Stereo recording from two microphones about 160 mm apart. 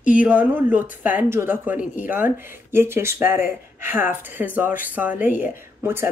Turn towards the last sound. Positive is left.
turn(degrees=-15)  # may be behind; listen again after turning